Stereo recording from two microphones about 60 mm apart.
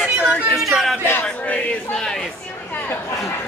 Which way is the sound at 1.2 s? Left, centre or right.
Centre.